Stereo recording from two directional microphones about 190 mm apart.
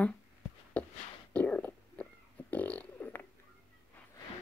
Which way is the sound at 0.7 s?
5° left (ahead or behind).